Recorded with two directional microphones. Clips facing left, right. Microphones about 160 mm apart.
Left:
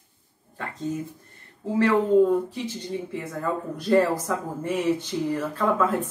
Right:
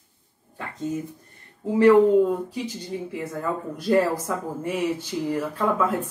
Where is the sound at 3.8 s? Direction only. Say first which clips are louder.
Even; 10° right (ahead or behind).